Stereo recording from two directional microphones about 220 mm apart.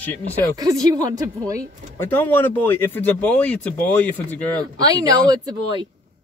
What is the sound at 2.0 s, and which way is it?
Speech, 10° left (ahead or behind).